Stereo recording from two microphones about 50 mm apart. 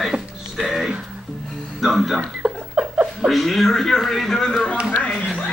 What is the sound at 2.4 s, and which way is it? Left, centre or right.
Chuckle, right.